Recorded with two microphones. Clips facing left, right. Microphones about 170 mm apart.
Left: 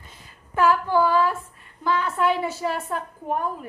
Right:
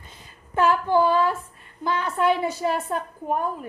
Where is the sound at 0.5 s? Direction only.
25° right (ahead or behind).